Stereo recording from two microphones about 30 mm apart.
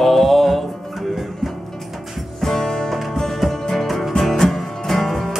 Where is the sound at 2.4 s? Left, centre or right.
Centre.